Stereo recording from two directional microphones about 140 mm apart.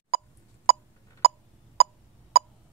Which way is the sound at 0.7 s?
45° right (ahead or behind).